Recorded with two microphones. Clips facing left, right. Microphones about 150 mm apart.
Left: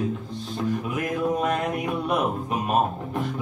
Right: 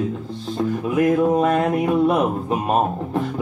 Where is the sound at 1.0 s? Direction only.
35° right (ahead or behind).